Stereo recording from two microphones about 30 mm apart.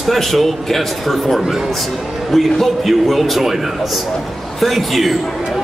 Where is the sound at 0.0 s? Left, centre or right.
Centre.